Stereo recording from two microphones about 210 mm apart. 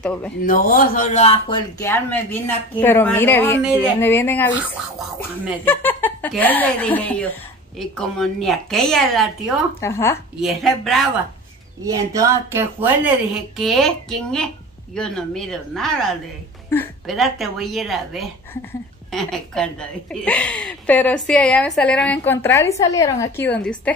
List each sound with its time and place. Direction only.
0.0 s a woman's voice: 5° left (ahead or behind)
0.4 s speech: 40° left (ahead or behind)
1.8 s a woman's voice: 10° left (ahead or behind)
5.7 s a woman's voice: 10° left (ahead or behind)
9.8 s a woman's voice: 10° left (ahead or behind)
10.4 s a woman's voice: centre (ahead or behind)
11.8 s speech: 15° right (ahead or behind)
13.6 s a woman's voice: centre (ahead or behind)